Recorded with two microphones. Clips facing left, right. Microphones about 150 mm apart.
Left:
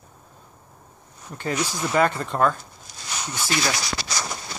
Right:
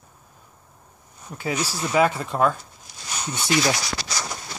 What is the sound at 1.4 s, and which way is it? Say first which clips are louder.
Speech: left 1 dB; 10° right (ahead or behind).